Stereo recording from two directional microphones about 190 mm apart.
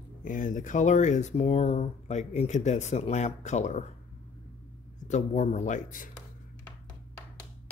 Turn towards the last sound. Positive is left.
turn(degrees=40)  # may be behind; listen again after turning